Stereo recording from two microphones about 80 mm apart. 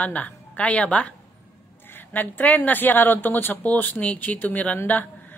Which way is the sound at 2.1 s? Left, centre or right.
Left.